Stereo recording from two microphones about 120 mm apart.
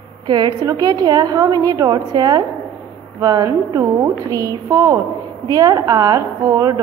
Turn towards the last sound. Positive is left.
turn(degrees=-25)  # may be behind; listen again after turning